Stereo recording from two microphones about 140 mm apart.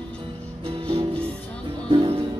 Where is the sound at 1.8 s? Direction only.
40° right (ahead or behind).